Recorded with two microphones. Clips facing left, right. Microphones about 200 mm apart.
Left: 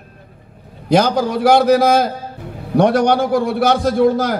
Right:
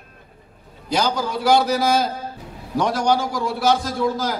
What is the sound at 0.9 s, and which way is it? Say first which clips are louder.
A man's voice: left 8 dB; 60° left (ahead or behind).